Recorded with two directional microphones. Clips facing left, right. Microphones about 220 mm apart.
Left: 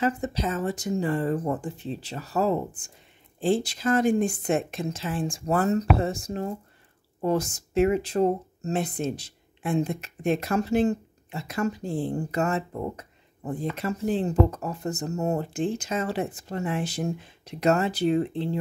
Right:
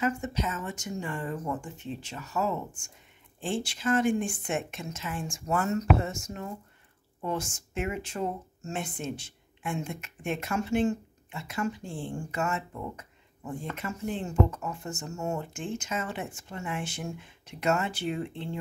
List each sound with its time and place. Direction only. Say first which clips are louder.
0.0 s speech: left 3 dB; 35° left (ahead or behind)